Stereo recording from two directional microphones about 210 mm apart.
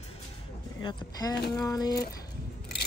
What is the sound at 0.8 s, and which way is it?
Speech, 20° left (ahead or behind).